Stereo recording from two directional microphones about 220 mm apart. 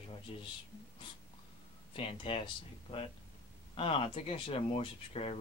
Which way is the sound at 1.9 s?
25° left (ahead or behind).